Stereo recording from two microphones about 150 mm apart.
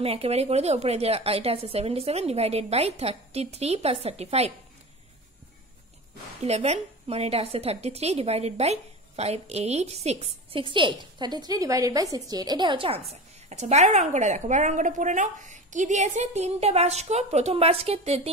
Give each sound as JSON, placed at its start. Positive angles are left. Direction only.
{"t": 0.0, "sound": "a woman's voice", "side_deg": -40}
{"t": 6.4, "sound": "a woman's voice", "side_deg": -45}
{"t": 13.1, "sound": "a woman's voice", "side_deg": -50}